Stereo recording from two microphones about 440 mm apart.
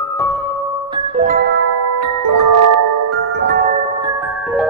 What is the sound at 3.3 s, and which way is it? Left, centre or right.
Music, right.